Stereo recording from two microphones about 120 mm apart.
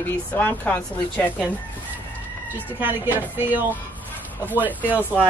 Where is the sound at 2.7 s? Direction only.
15° right (ahead or behind).